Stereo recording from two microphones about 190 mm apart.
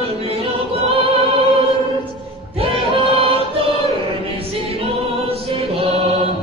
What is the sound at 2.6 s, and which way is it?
Music, 30° right (ahead or behind).